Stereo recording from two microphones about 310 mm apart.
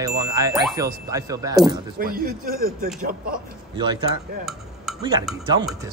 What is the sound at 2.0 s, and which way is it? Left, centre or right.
Speech, right.